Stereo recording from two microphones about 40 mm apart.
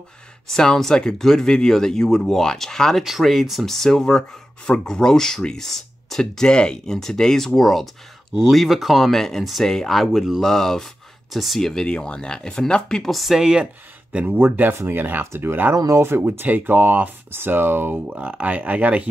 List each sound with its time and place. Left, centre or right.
0.5 s speech: centre
3.0 s speech: centre
3.6 s speech: centre
9.0 s speech: centre
9.4 s speech: centre
11.8 s speech: left
13.1 s speech: centre
13.4 s speech: centre
14.2 s speech: right
14.7 s speech: right
15.3 s speech: right
16.2 s speech: right
17.3 s speech: right
18.0 s speech: right